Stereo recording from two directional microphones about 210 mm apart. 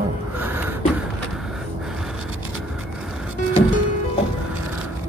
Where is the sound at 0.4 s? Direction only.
10° right (ahead or behind).